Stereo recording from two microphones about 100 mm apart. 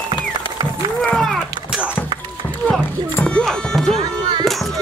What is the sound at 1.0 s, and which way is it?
Run, 5° left (ahead or behind).